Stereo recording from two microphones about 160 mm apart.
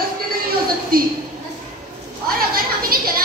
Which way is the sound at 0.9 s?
65° right (ahead or behind).